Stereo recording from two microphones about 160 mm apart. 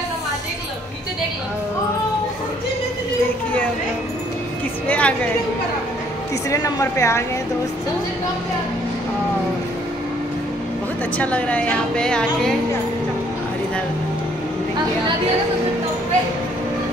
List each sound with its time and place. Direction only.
4.8 s a sound: 10° left (ahead or behind)
6.5 s a woman's voice: 20° left (ahead or behind)
11.1 s speech: 10° left (ahead or behind)